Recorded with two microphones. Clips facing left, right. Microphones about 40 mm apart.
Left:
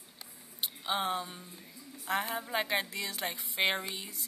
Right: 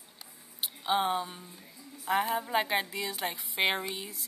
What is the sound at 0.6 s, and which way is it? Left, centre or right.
A woman's voice, centre.